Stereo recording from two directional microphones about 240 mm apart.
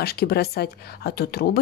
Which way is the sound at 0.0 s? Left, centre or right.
Left.